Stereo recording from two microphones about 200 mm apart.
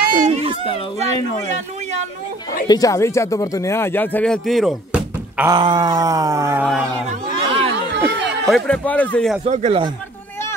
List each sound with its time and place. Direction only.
0.1 s children playing: 35° right (ahead or behind)
0.9 s speech: 35° right (ahead or behind)
2.7 s speech: 15° left (ahead or behind); by 5.5 s 5° right (ahead or behind)
5.5 s cat: 20° right (ahead or behind)
7.1 s a sound: 30° right (ahead or behind)
8.5 s a man's voice: 5° left (ahead or behind)
9.5 s speech: 35° right (ahead or behind)